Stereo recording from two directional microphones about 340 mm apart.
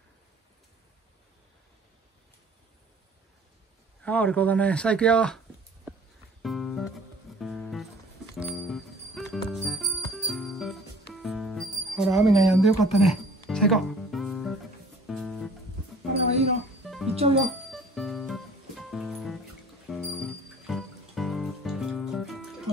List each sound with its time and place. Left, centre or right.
4.0 s speech: centre
6.4 s music: centre
16.8 s music: centre
17.1 s speech: centre
17.9 s music: centre